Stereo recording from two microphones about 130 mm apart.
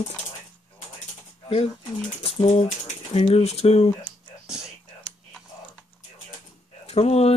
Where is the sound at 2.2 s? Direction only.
50° left (ahead or behind).